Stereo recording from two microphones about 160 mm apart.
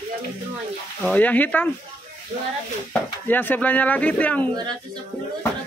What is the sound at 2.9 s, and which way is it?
Speech, 10° left (ahead or behind).